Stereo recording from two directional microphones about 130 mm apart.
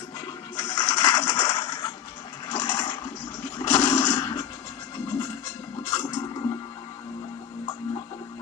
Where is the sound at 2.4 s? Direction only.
35° left (ahead or behind).